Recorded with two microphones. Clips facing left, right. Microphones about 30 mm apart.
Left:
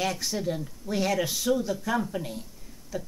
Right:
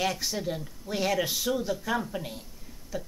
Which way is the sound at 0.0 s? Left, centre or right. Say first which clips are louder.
Left 1 dB; centre.